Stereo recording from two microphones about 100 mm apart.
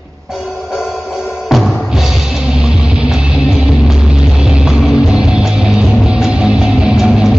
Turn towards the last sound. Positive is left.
turn(degrees=0)  # may be behind; listen again after turning